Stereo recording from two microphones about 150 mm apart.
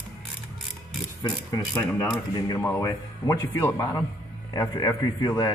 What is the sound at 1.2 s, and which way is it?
Speech, 25° left (ahead or behind).